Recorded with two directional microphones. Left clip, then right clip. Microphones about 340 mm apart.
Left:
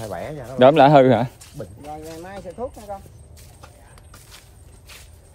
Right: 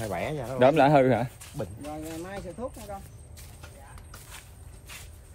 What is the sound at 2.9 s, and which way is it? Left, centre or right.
Speech, centre.